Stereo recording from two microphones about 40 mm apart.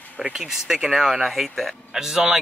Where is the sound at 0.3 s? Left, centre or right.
Centre.